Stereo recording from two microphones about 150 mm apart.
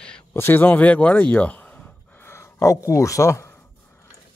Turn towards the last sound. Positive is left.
turn(degrees=20)  # may be behind; listen again after turning